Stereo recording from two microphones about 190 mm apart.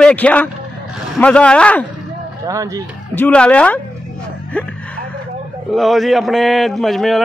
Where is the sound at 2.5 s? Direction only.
15° right (ahead or behind).